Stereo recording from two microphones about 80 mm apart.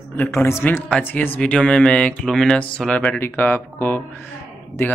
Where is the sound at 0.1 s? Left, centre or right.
Left.